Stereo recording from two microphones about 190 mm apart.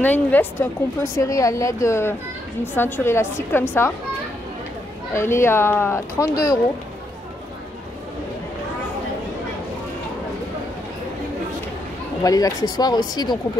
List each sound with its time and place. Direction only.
0.0 s speech: 10° left (ahead or behind)
5.1 s speech: 15° left (ahead or behind)
12.2 s speech: 20° left (ahead or behind)